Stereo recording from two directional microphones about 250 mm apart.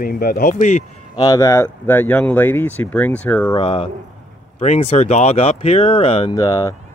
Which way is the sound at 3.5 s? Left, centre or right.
Left.